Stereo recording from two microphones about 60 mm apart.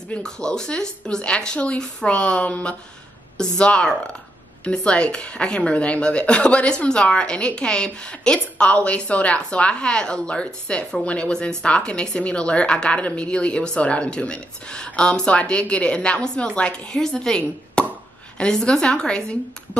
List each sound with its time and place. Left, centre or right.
0.1 s speech: centre
17.8 s plop: centre
18.4 s speech: centre